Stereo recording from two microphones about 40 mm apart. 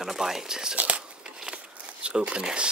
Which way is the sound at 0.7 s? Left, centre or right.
Right.